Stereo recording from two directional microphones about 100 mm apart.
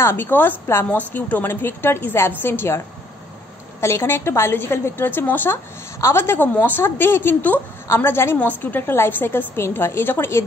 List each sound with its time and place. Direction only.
0.0 s a woman's voice: 20° left (ahead or behind)
3.8 s a woman's voice: 25° left (ahead or behind)